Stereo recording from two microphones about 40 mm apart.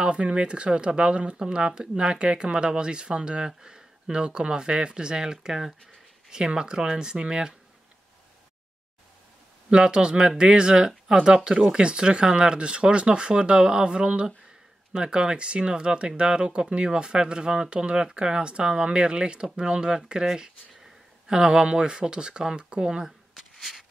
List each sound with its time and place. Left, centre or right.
0.0 s speech: right
9.7 s speech: right
23.0 s shuffling cards: centre